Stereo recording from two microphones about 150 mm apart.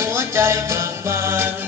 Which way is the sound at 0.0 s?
20° right (ahead or behind).